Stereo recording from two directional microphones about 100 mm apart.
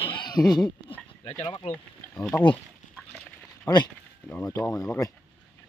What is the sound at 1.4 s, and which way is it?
Speech, 50° left (ahead or behind).